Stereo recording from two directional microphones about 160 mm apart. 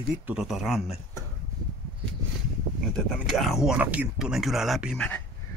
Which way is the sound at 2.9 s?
Centre (ahead or behind).